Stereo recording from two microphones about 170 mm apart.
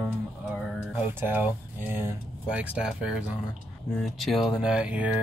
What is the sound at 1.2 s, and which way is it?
Speech, 10° right (ahead or behind).